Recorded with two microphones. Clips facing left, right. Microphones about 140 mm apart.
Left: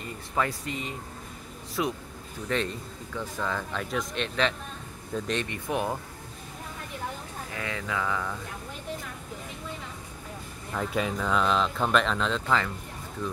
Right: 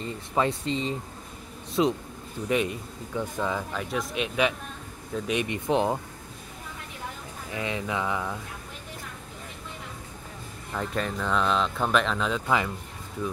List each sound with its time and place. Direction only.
0.0 s speech: 25° right (ahead or behind)
1.8 s mantra: 25° right (ahead or behind)
2.4 s speech: 15° right (ahead or behind)
7.5 s mantra: 20° right (ahead or behind)
10.7 s speech: centre (ahead or behind)